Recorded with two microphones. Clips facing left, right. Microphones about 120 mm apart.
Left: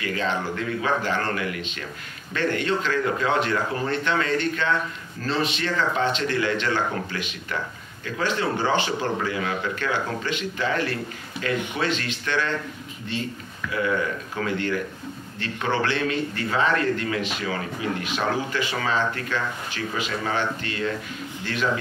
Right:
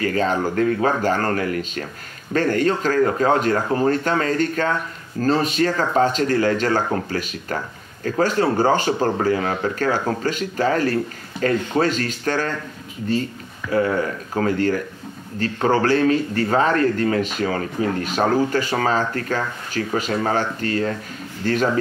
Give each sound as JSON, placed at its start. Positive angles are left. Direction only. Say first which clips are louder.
{"t": 0.0, "sound": "speech", "louder": "right 6 dB", "side_deg": -40}
{"t": 13.7, "sound": "speech", "louder": "right 5 dB", "side_deg": -40}